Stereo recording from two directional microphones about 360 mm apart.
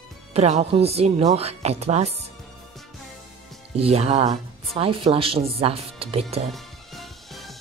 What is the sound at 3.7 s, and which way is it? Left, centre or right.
Speech, centre.